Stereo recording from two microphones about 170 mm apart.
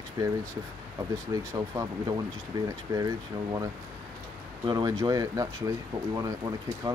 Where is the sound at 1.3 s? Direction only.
20° right (ahead or behind).